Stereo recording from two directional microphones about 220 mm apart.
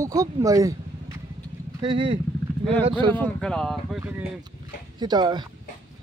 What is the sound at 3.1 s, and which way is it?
Speech, 5° left (ahead or behind).